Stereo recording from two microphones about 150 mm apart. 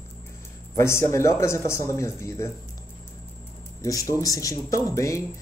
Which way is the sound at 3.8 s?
20° left (ahead or behind).